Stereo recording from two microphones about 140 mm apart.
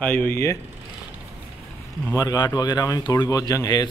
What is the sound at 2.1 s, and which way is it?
Speech, 25° left (ahead or behind).